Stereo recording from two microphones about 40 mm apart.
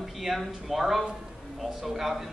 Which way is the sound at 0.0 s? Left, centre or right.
Centre.